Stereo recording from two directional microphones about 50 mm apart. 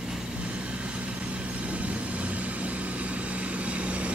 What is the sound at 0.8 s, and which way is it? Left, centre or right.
Vehicle, right.